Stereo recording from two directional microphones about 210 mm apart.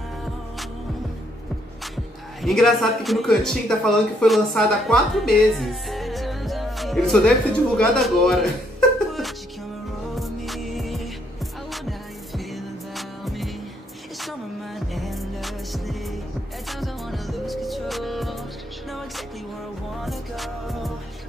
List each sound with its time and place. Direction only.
2.4 s speech: centre (ahead or behind)
10.1 s music: centre (ahead or behind)
12.4 s music: centre (ahead or behind)
15.0 s music: centre (ahead or behind)